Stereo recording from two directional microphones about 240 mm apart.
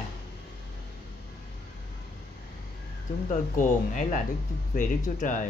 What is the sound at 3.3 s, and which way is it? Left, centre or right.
Speech, left.